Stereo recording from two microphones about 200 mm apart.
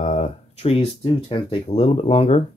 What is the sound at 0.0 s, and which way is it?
Speech, 35° left (ahead or behind).